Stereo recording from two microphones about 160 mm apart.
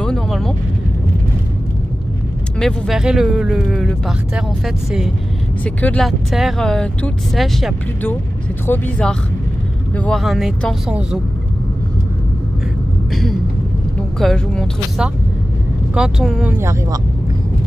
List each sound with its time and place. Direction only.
0.0 s vehicle: 5° left (ahead or behind)
2.6 s speech: centre (ahead or behind)
5.8 s speech: 10° left (ahead or behind)
8.6 s speech: 10° left (ahead or behind); by 11.1 s 5° right (ahead or behind)
14.2 s speech: 5° left (ahead or behind)
16.5 s speech: 15° right (ahead or behind)